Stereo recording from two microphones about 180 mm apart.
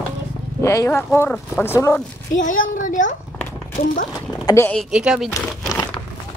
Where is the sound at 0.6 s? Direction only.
15° left (ahead or behind).